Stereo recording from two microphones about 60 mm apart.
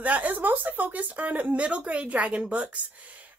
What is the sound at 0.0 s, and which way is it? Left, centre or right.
Speech, right.